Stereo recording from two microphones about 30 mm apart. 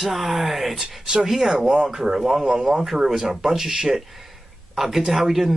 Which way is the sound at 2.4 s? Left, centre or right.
Right.